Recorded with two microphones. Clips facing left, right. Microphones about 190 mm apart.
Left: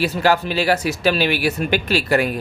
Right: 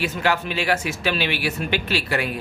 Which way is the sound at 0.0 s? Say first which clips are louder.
Left 5 dB; 35° left (ahead or behind).